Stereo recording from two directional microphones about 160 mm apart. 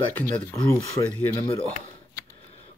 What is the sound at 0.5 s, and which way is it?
Speech, 20° left (ahead or behind).